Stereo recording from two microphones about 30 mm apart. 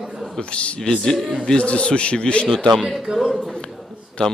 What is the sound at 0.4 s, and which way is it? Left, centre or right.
Speech, left.